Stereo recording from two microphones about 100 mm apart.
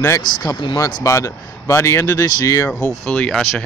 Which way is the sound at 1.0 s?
30° left (ahead or behind).